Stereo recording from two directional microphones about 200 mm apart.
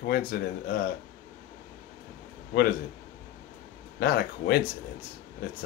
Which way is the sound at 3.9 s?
50° left (ahead or behind).